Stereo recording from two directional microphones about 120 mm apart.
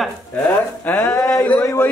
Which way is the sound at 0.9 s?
20° left (ahead or behind).